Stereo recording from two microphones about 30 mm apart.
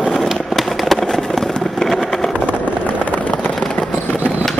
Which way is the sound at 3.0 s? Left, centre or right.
Left.